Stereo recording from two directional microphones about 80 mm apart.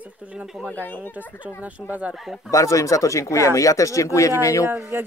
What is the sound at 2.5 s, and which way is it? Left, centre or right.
Speech, left.